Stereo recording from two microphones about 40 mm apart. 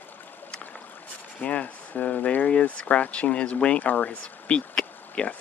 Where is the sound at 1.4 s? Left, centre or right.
Left.